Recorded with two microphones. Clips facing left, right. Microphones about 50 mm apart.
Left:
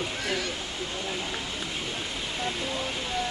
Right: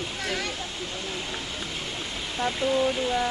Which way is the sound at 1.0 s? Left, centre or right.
Centre.